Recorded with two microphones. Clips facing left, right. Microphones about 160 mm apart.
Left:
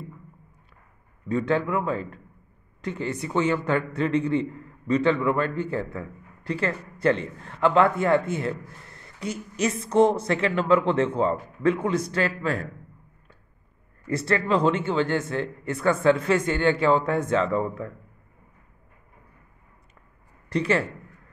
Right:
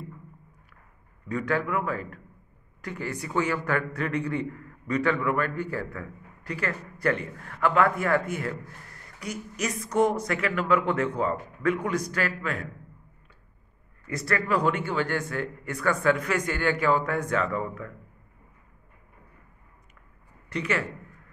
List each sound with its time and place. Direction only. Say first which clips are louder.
1.3 s a man's voice: left 3 dB; 25° left (ahead or behind)
14.0 s a man's voice: left 4 dB; 25° left (ahead or behind)
20.4 s speech: left 5 dB; 35° left (ahead or behind)